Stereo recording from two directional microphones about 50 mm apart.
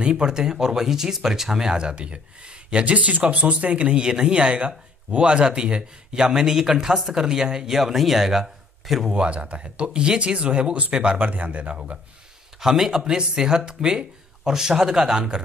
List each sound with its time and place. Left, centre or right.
0.0 s speech: centre
9.1 s speech: right
12.5 s speech: centre